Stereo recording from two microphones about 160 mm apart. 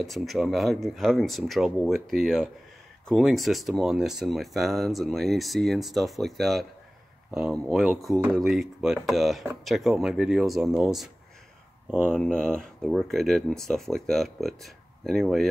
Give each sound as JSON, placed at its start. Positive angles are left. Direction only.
{"t": 0.0, "sound": "speech", "side_deg": 0}
{"t": 8.1, "sound": "speech", "side_deg": -15}
{"t": 8.4, "sound": "speech", "side_deg": 0}
{"t": 12.1, "sound": "speech", "side_deg": 5}